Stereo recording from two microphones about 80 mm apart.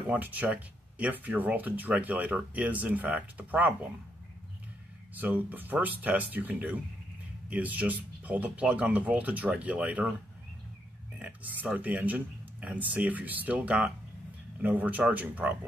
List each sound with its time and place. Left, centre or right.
0.1 s speech: right
5.1 s speech: right
11.1 s speech: centre